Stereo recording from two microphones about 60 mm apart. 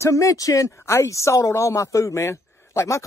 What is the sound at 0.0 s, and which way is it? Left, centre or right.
Speech, left.